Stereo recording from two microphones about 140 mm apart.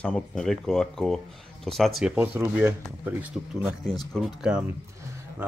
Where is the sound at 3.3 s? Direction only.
Centre (ahead or behind).